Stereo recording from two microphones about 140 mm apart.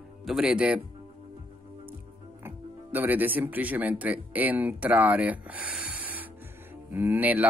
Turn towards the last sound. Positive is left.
turn(degrees=-10)  # may be behind; listen again after turning